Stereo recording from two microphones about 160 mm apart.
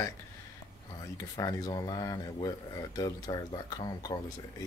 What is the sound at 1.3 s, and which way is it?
Speech, 25° left (ahead or behind).